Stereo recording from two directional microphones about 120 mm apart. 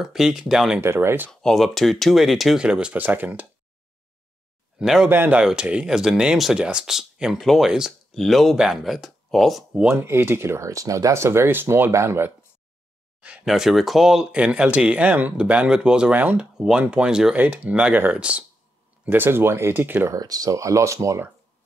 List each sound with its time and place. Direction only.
0.0 s speech: 5° right (ahead or behind)
0.7 s speech: 20° right (ahead or behind)
1.3 s speech: 5° left (ahead or behind); by 3.4 s 15° right (ahead or behind)
4.7 s speech: 5° right (ahead or behind)
5.1 s speech: 15° right (ahead or behind)
5.4 s speech: 5° right (ahead or behind)
10.0 s speech: 20° right (ahead or behind)
13.5 s speech: centre (ahead or behind); by 20.2 s 15° right (ahead or behind)
20.2 s speech: 30° right (ahead or behind)